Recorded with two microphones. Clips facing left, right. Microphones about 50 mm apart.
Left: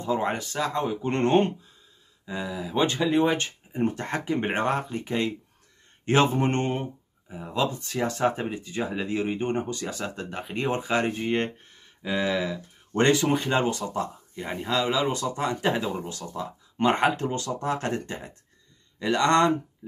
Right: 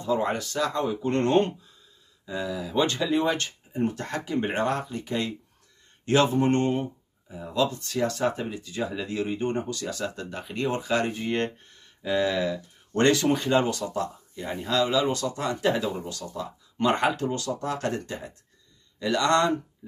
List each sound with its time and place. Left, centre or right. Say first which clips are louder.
0.0 s speech: right 1 dB; left
6.2 s speech: right 2 dB; left